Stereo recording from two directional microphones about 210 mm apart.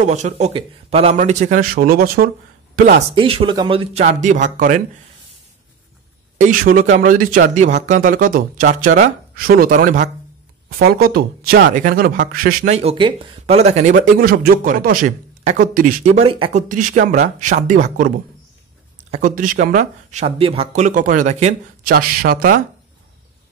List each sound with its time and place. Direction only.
0.0 s speech: 35° right (ahead or behind)
3.2 s speech: 25° right (ahead or behind)
6.3 s speech: 40° right (ahead or behind)
12.7 s speech: 25° right (ahead or behind)
16.6 s speech: 40° right (ahead or behind)